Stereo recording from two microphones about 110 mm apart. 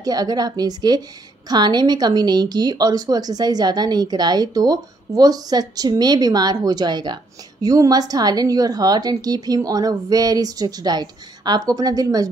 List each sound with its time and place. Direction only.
0.0 s speech: 35° right (ahead or behind)